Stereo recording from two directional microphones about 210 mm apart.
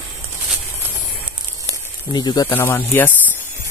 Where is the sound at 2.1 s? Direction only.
20° left (ahead or behind).